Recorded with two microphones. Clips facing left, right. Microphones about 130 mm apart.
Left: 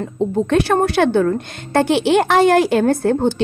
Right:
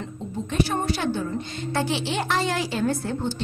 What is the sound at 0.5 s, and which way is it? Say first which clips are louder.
Speech: left 7 dB; 75° left (ahead or behind).